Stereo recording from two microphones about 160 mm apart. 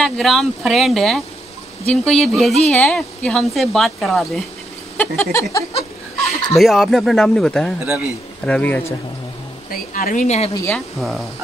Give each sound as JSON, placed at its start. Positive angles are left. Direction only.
{"t": 0.0, "sound": "speech", "side_deg": 0}
{"t": 4.9, "sound": "a sound", "side_deg": 10}
{"t": 6.5, "sound": "speech", "side_deg": 0}
{"t": 7.8, "sound": "a man's voice", "side_deg": -10}
{"t": 8.5, "sound": "a sound", "side_deg": 10}
{"t": 9.7, "sound": "speech", "side_deg": 60}
{"t": 10.7, "sound": "speech", "side_deg": 0}